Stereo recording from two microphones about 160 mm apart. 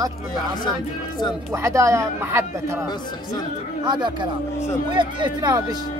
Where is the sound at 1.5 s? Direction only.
15° right (ahead or behind).